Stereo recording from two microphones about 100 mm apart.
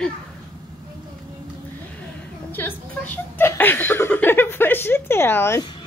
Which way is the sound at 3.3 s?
20° left (ahead or behind).